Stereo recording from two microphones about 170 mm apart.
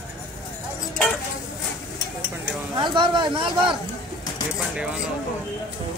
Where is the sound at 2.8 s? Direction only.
30° right (ahead or behind).